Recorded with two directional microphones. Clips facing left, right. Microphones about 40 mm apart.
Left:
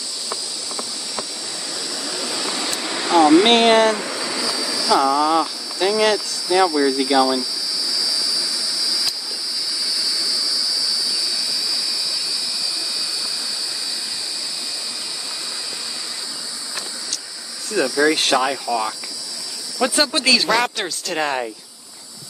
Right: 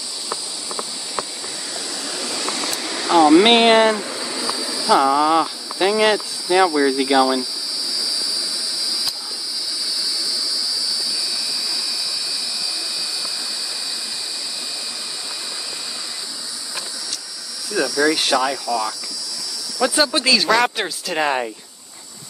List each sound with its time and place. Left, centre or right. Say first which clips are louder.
2.2 s a sound: right 1 dB; centre
3.1 s speech: right 1 dB; centre
3.3 s speech: right 1 dB; centre
17.7 s speech: left 1 dB; left
20.0 s speech: even; centre